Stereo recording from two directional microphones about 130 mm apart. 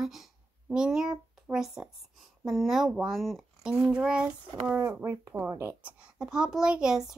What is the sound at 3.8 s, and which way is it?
Child singing, 5° right (ahead or behind).